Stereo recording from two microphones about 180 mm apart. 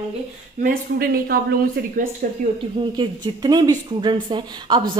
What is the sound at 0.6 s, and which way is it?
Speech, 55° right (ahead or behind).